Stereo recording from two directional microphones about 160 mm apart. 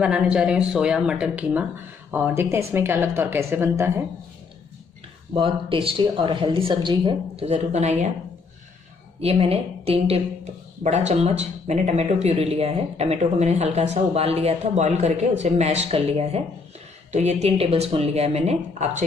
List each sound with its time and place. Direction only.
0.0 s speech: 5° right (ahead or behind)
5.3 s a woman's voice: 35° right (ahead or behind)
7.4 s speech: 45° right (ahead or behind)
9.2 s a woman's voice: 40° right (ahead or behind)